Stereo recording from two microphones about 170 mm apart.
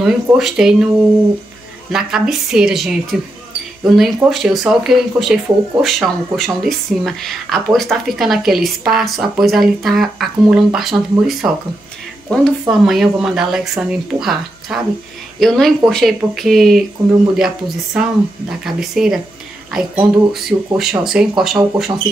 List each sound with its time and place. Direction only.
0.0 s speech: centre (ahead or behind)
1.9 s speech: 5° right (ahead or behind)
12.6 s speech: centre (ahead or behind)